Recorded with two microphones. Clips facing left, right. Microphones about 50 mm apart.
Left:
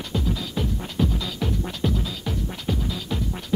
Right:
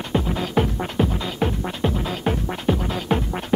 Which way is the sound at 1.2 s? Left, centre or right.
Right.